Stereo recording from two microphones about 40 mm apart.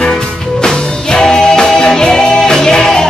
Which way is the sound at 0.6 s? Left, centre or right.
Centre.